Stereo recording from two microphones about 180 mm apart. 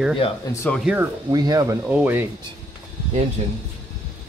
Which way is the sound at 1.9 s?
10° right (ahead or behind).